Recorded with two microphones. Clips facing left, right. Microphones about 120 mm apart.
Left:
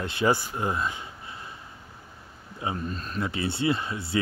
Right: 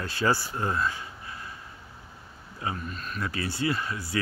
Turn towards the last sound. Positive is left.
turn(degrees=25)  # may be behind; listen again after turning